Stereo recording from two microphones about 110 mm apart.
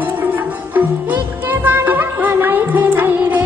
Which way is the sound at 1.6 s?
15° right (ahead or behind).